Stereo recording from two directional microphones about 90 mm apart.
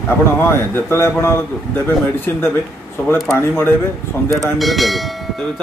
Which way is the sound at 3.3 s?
25° left (ahead or behind).